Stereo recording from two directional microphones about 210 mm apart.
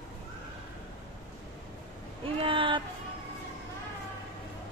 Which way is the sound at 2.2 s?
25° right (ahead or behind).